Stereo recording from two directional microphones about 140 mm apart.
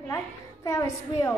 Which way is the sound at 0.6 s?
25° left (ahead or behind).